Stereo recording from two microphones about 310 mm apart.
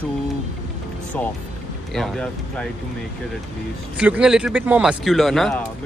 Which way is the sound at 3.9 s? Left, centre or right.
Centre.